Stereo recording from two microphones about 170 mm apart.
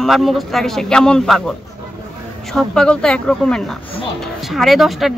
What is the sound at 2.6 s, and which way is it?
Speech, 5° left (ahead or behind).